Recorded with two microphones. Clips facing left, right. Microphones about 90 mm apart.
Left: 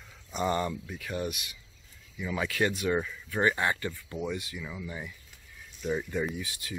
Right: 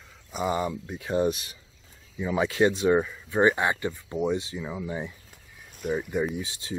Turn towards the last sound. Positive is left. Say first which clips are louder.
# right 4 dB
turn(degrees=-25)  # may be behind; listen again after turning